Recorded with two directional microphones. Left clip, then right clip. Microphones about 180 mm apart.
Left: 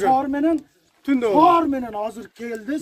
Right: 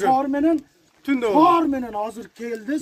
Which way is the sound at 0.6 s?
55° left (ahead or behind).